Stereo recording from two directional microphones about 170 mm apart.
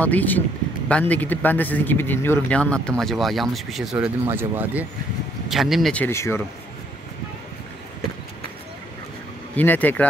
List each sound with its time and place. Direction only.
0.0 s a man's voice: 10° left (ahead or behind)
6.0 s a man's voice: 15° left (ahead or behind)
9.6 s a man's voice: 10° left (ahead or behind)